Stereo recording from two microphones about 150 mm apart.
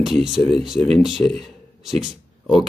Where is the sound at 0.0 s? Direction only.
5° right (ahead or behind).